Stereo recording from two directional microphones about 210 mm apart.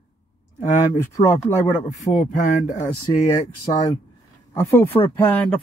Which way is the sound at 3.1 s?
25° left (ahead or behind).